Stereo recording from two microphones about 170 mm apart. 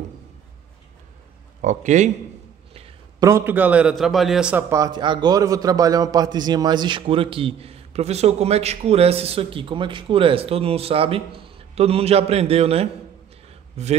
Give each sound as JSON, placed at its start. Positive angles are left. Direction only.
{"t": 1.6, "sound": "speech", "side_deg": -45}
{"t": 3.2, "sound": "a man's voice", "side_deg": -15}
{"t": 13.5, "sound": "a sound", "side_deg": -40}